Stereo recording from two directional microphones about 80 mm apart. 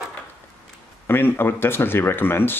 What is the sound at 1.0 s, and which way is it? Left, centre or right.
Speech, left.